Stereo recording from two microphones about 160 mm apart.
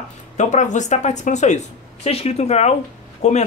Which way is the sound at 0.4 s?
50° left (ahead or behind).